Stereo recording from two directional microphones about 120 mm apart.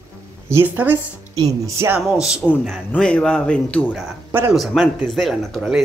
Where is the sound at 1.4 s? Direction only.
30° right (ahead or behind).